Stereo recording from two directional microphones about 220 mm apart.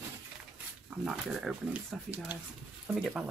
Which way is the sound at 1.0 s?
Centre (ahead or behind).